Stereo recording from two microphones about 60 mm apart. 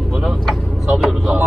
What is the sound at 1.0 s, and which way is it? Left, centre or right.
Speech, centre.